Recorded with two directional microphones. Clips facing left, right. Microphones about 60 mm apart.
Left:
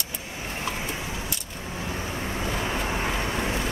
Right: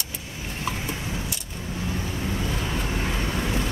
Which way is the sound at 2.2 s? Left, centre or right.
Left.